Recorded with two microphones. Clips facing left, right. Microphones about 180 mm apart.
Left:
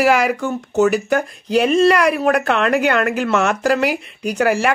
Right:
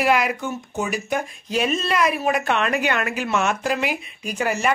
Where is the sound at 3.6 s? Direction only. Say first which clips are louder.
Left 7 dB; 75° left (ahead or behind).